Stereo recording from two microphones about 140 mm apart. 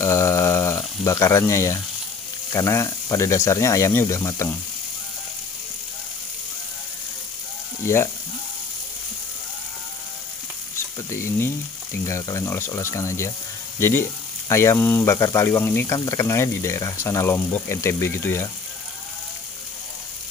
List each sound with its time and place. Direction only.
0.0 s a sound: 20° left (ahead or behind)
2.5 s speech: 20° left (ahead or behind)
7.8 s speech: 20° left (ahead or behind)
11.1 s speech: 20° left (ahead or behind)